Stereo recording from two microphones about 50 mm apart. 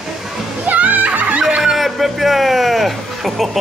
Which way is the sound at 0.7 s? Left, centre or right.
Right.